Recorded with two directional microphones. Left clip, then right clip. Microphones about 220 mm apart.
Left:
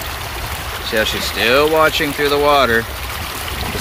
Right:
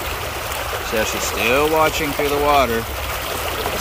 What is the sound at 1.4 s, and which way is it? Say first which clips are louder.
Speech: left 4 dB; 15° left (ahead or behind).